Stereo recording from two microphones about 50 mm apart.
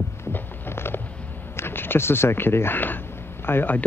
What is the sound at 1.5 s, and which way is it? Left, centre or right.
Speech, left.